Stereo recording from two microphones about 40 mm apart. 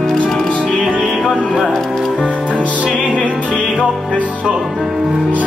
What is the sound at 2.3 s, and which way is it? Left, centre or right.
Music, left.